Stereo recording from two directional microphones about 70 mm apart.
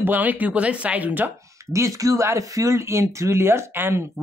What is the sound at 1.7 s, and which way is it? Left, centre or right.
Speech, right.